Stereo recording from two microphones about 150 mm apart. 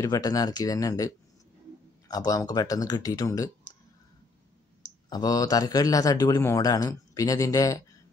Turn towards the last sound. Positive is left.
turn(degrees=20)  # may be behind; listen again after turning